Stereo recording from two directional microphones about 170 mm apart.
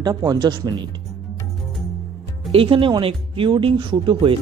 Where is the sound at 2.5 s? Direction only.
35° right (ahead or behind).